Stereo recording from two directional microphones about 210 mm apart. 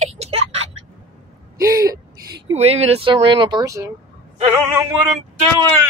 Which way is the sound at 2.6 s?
30° right (ahead or behind).